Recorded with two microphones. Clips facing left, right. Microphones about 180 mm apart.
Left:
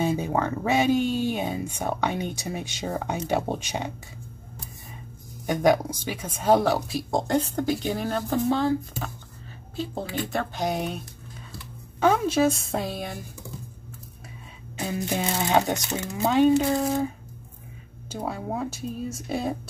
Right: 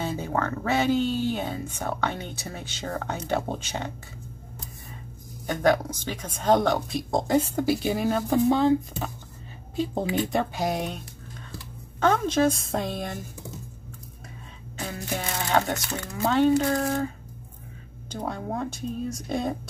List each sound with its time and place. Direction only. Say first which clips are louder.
0.0 s speech: left 3 dB; 15° left (ahead or behind)
5.5 s speech: left 2 dB; 15° left (ahead or behind); by 9.1 s 15° right (ahead or behind)
10.1 s speech: right 2 dB; 20° right (ahead or behind)
10.5 s speech: even; centre (ahead or behind)
12.0 s speech: left 1 dB; 10° left (ahead or behind)
14.8 s speech: left 4 dB; 20° left (ahead or behind)
18.1 s speech: left 1 dB; 5° left (ahead or behind)